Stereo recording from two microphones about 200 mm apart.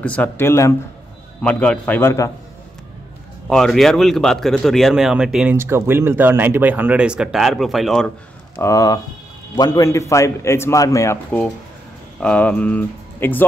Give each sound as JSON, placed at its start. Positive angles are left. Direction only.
{"t": 0.0, "sound": "a man's voice", "side_deg": 5}
{"t": 3.4, "sound": "speech", "side_deg": 5}
{"t": 8.5, "sound": "a man's voice", "side_deg": 15}